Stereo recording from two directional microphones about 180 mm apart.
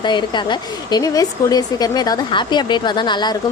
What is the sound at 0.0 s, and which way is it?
A woman's voice, 25° left (ahead or behind).